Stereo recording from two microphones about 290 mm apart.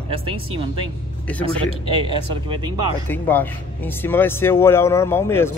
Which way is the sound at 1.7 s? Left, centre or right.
Centre.